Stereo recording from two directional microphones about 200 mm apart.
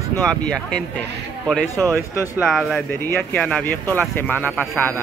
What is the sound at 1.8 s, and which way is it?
Speech, 15° right (ahead or behind).